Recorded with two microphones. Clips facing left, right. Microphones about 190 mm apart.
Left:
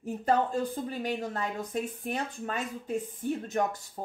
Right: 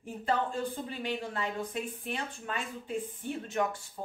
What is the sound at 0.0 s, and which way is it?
Speech, 40° left (ahead or behind).